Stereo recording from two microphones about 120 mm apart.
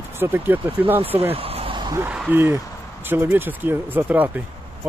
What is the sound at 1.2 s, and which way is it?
Vehicle, 55° right (ahead or behind).